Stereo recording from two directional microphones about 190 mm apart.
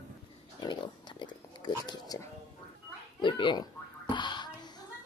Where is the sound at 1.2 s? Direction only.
20° left (ahead or behind).